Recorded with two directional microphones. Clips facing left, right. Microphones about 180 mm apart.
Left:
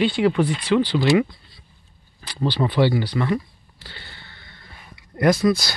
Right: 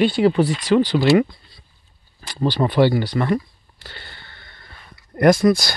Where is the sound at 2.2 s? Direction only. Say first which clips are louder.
Right 2 dB; 45° right (ahead or behind).